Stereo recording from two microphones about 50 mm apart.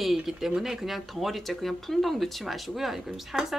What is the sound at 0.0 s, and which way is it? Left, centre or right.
A woman's voice, centre.